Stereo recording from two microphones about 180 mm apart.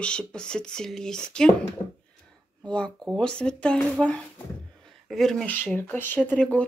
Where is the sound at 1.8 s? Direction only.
25° left (ahead or behind).